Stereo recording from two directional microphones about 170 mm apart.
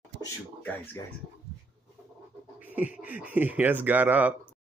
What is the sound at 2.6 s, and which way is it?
Speech, 10° right (ahead or behind).